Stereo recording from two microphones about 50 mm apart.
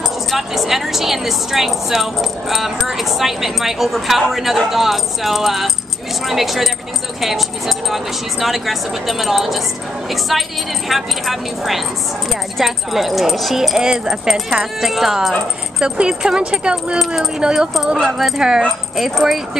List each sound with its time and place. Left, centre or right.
0.3 s a woman's voice: centre
15.8 s speech: centre
17.0 s a woman's voice: centre
17.4 s speech: centre